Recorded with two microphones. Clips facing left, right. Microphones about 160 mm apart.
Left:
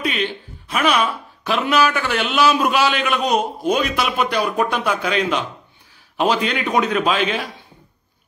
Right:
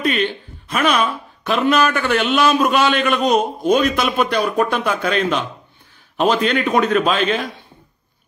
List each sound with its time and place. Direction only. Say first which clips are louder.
0.0 s music: right 4 dB; 50° right (ahead or behind)
0.7 s a man's voice: right 1 dB; 10° left (ahead or behind)